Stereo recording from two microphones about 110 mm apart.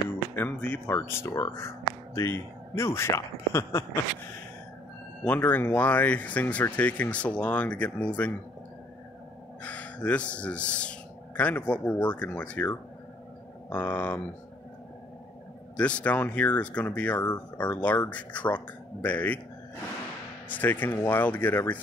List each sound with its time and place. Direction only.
0.4 s speech: 20° left (ahead or behind)
5.2 s speech: 15° left (ahead or behind)
9.6 s speech: 15° left (ahead or behind)
15.7 s speech: 10° left (ahead or behind)
20.4 s speech: 15° left (ahead or behind)